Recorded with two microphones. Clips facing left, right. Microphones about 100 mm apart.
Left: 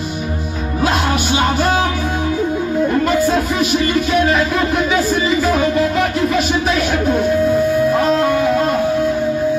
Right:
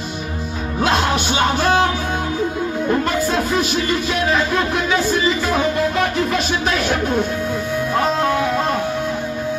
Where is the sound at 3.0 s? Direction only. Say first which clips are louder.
Left 4 dB; centre (ahead or behind).